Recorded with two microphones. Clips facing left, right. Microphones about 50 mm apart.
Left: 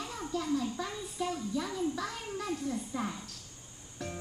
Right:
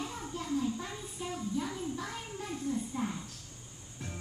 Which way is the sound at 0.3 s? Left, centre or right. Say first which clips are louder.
Left 2 dB; left.